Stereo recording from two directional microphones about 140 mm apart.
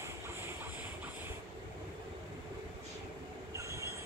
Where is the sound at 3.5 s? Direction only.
20° right (ahead or behind).